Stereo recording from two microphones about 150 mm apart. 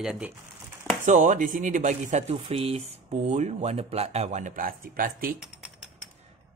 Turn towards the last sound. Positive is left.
turn(degrees=-75)  # may be behind; listen again after turning